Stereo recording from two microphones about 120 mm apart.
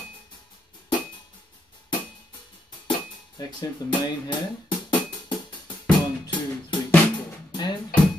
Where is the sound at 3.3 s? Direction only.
40° left (ahead or behind).